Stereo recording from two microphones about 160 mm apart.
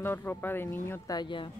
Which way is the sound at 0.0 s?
15° left (ahead or behind).